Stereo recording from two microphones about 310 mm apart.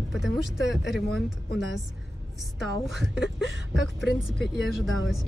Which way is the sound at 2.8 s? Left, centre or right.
Centre.